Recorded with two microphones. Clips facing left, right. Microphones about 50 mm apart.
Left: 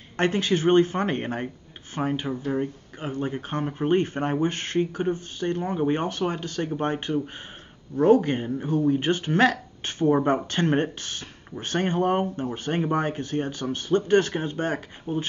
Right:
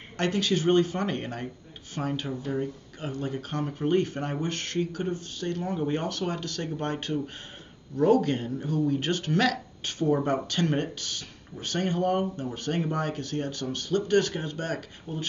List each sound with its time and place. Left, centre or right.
0.2 s speech: left